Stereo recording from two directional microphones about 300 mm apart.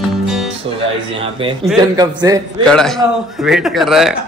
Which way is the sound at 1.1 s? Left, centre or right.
Centre.